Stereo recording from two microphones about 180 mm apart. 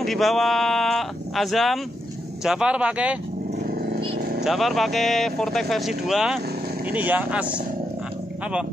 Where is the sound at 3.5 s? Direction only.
55° right (ahead or behind).